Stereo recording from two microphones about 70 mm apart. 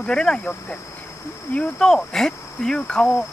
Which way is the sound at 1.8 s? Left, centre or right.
Centre.